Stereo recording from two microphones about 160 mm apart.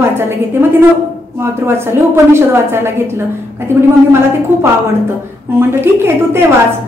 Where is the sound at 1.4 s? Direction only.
15° right (ahead or behind).